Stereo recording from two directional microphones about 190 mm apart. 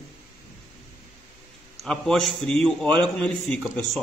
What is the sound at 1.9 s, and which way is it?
Speech, 5° left (ahead or behind).